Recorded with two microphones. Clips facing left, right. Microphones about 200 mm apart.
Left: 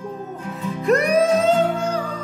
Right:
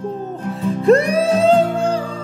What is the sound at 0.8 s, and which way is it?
Music, 30° right (ahead or behind).